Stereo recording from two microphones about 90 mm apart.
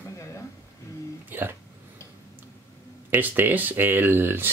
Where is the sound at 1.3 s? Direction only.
25° right (ahead or behind).